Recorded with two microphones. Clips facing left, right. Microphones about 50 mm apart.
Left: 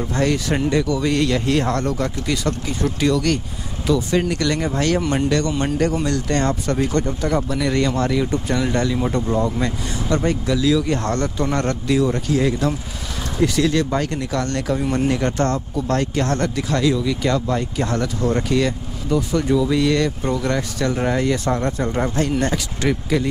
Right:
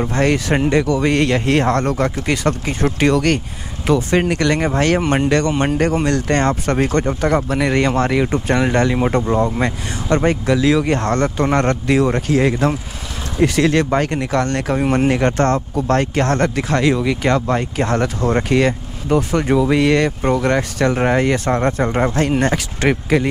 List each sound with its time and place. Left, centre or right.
0.0 s speech: right
21.8 s speech: right